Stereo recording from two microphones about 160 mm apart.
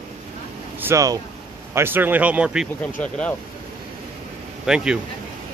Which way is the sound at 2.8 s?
10° left (ahead or behind).